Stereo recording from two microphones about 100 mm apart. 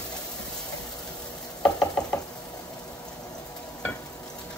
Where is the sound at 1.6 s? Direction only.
10° left (ahead or behind).